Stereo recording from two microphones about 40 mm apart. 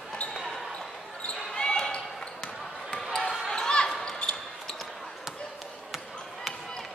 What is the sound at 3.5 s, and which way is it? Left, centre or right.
Basketball bounce, left.